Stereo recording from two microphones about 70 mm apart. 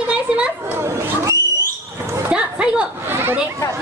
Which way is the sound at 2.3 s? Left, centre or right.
Centre.